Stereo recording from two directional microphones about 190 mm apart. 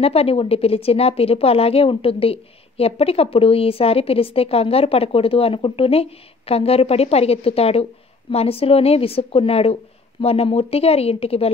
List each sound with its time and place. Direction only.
0.0 s a woman's voice: 30° left (ahead or behind)